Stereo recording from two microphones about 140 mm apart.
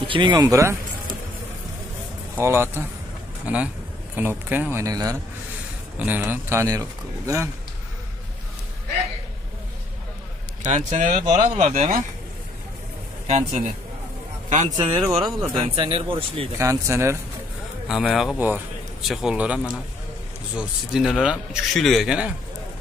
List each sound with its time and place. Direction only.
0.0 s speech: 35° right (ahead or behind)
2.3 s speech: 15° right (ahead or behind)
5.9 s speech: 10° right (ahead or behind)
10.6 s speech: 55° right (ahead or behind)
13.3 s a man's voice: 70° right (ahead or behind)
14.7 s speech: 35° right (ahead or behind)
16.5 s speech: 20° right (ahead or behind)
17.8 s a man's voice: 5° right (ahead or behind)